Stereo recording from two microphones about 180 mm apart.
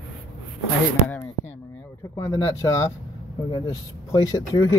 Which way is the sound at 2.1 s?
15° left (ahead or behind).